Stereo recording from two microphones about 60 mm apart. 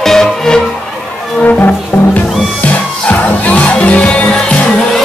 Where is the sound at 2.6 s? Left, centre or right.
Left.